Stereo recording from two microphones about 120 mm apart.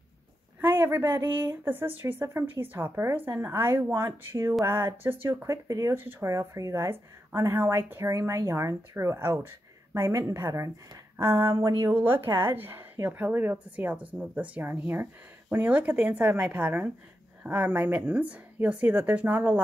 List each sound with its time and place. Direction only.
0.6 s speech: 15° right (ahead or behind)
5.9 s speech: 15° right (ahead or behind)